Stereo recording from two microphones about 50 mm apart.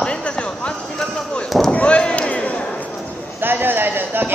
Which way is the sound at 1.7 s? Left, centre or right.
Left.